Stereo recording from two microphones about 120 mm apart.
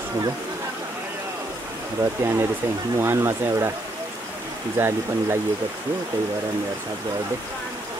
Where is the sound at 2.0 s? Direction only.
20° right (ahead or behind).